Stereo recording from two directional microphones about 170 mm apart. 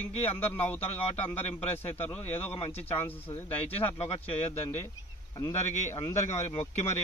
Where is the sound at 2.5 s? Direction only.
30° left (ahead or behind).